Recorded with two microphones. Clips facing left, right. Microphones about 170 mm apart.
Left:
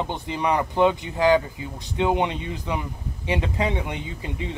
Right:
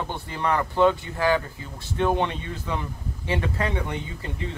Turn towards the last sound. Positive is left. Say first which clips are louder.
# even
turn(degrees=15)  # may be behind; listen again after turning